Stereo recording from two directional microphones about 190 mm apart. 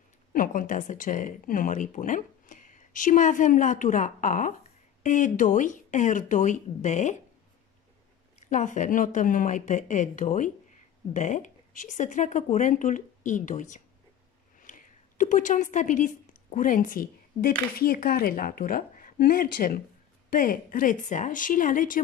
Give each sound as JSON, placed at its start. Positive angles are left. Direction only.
{"t": 0.3, "sound": "speech", "side_deg": 45}
{"t": 8.4, "sound": "a woman's voice", "side_deg": 40}